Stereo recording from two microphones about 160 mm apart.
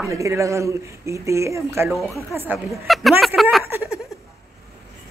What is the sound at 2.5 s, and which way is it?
A woman's voice, centre (ahead or behind).